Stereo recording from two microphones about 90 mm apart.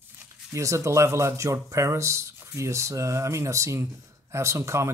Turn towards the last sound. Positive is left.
turn(degrees=-30)  # may be behind; listen again after turning